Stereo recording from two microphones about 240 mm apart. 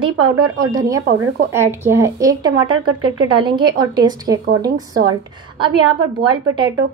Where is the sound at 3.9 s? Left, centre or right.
Centre.